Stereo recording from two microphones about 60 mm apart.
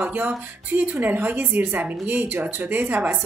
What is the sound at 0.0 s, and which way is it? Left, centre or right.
A woman's voice, right.